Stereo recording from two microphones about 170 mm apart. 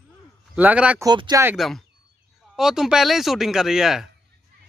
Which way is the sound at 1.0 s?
25° right (ahead or behind).